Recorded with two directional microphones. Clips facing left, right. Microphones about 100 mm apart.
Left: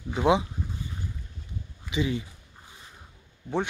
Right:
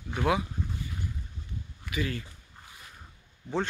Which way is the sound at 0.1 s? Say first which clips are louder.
Left 5 dB; 20° left (ahead or behind).